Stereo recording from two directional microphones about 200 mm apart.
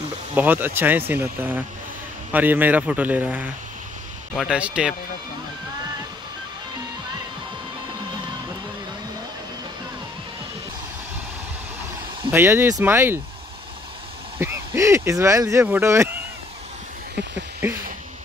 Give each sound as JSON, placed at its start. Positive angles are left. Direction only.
{"t": 0.3, "sound": "speech", "side_deg": -10}
{"t": 12.3, "sound": "speech", "side_deg": -10}
{"t": 14.4, "sound": "speech", "side_deg": -15}
{"t": 17.6, "sound": "speech", "side_deg": -10}